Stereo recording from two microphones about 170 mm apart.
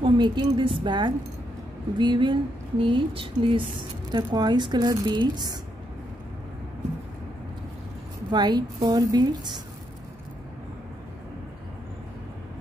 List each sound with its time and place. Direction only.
0.0 s a woman's voice: 25° right (ahead or behind)
8.3 s a woman's voice: 25° right (ahead or behind)